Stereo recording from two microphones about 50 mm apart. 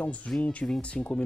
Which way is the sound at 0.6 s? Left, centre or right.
Centre.